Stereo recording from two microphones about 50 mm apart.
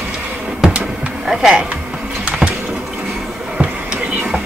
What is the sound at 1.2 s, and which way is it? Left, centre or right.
Speech, centre.